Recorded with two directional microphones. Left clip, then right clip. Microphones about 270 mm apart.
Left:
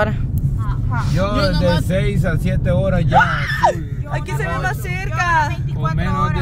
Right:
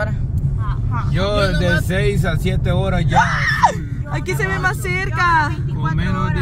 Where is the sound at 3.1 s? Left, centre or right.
Centre.